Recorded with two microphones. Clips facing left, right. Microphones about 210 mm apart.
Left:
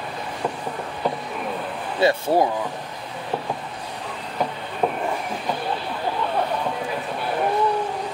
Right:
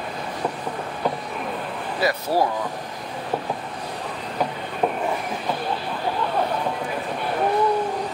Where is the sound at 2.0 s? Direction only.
25° left (ahead or behind).